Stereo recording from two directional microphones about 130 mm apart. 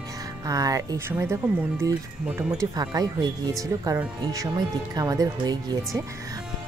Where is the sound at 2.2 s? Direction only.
10° right (ahead or behind).